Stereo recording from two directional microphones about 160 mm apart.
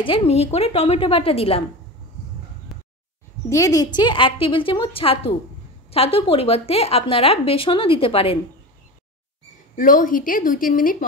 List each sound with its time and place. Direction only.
0.0 s speech: 35° left (ahead or behind)
2.7 s a sound: centre (ahead or behind)
3.4 s speech: 20° left (ahead or behind); by 8.4 s 35° left (ahead or behind)
9.8 s a woman's voice: 55° left (ahead or behind)